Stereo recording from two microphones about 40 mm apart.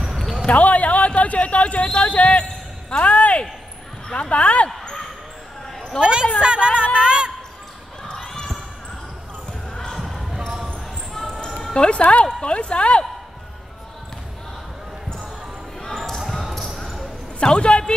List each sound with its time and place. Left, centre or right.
0.0 s basketball bounce: centre
0.5 s speech: left
2.3 s basketball bounce: centre
3.0 s speech: left
5.9 s speech: right
11.1 s basketball bounce: centre
11.7 s speech: left
12.3 s speech: left
16.3 s basketball bounce: centre
17.4 s speech: left